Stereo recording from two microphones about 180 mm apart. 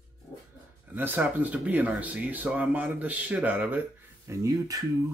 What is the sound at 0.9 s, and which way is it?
Speech, 10° right (ahead or behind).